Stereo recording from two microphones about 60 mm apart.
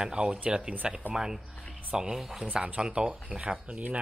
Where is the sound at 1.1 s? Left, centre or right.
Centre.